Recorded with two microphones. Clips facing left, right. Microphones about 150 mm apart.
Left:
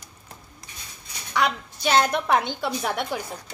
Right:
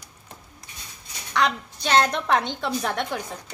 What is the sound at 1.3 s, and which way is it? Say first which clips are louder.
Speech: right 1 dB; 10° left (ahead or behind).